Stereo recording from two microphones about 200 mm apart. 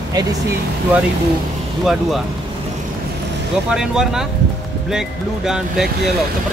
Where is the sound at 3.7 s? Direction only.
5° right (ahead or behind).